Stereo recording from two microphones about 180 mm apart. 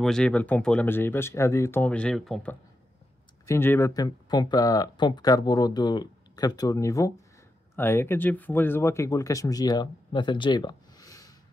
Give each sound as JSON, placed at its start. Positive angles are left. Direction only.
{"t": 0.0, "sound": "speech", "side_deg": 5}
{"t": 3.4, "sound": "speech", "side_deg": 15}